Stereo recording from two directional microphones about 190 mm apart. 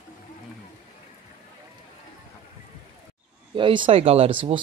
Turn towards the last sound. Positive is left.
turn(degrees=-30)  # may be behind; listen again after turning